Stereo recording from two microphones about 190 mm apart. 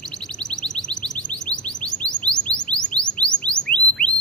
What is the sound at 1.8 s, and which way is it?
Chirp, 5° left (ahead or behind).